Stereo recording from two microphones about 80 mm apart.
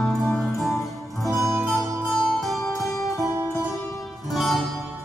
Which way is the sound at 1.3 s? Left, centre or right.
Right.